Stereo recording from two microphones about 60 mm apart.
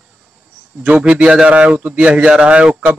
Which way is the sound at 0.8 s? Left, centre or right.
Centre.